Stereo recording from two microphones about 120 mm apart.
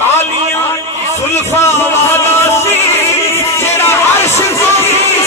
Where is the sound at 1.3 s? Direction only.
20° left (ahead or behind).